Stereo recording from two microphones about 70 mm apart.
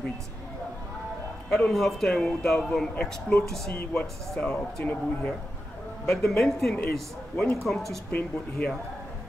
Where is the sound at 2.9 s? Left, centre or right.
Centre.